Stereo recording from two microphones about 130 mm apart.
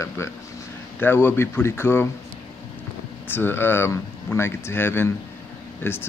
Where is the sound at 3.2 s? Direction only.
15° left (ahead or behind).